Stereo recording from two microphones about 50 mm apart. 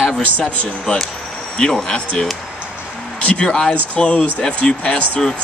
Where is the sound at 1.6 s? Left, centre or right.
Centre.